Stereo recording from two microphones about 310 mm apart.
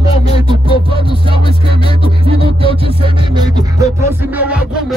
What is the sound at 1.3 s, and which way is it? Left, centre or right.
Music, centre.